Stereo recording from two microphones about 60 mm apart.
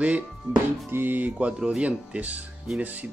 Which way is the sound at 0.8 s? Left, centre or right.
Right.